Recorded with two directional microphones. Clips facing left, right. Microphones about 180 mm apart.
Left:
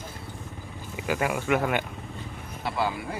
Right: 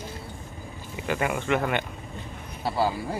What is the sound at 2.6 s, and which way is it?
Vehicle, 35° right (ahead or behind).